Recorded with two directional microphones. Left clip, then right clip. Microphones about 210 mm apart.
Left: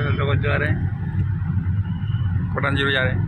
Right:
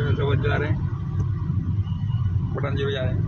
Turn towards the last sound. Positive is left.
turn(degrees=10)  # may be behind; listen again after turning